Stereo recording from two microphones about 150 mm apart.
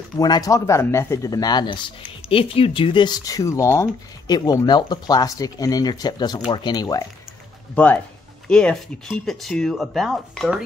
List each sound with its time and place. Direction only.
0.2 s speech: 25° left (ahead or behind)
7.7 s speech: 10° left (ahead or behind)